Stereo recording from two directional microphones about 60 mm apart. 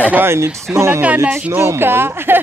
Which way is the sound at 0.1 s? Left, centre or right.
Right.